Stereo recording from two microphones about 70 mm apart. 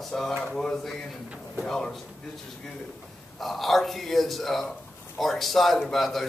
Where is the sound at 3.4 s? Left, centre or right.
Centre.